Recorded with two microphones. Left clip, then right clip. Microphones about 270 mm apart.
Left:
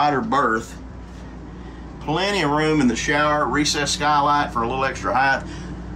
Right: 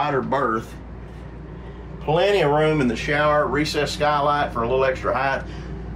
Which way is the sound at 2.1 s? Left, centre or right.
Centre.